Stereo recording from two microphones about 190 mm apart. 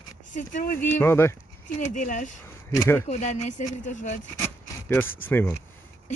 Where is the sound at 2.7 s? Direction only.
15° left (ahead or behind).